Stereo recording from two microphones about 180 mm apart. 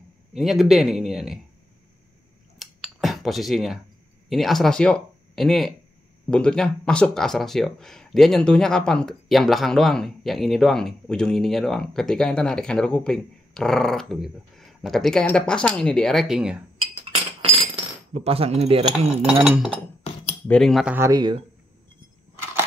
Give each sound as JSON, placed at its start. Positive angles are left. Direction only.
{"t": 0.3, "sound": "speech", "side_deg": 0}
{"t": 2.6, "sound": "scissors", "side_deg": 0}
{"t": 4.3, "sound": "speech", "side_deg": 0}
{"t": 17.0, "sound": "cutlery", "side_deg": -30}
{"t": 19.4, "sound": "speech", "side_deg": -5}
{"t": 20.9, "sound": "speech", "side_deg": -15}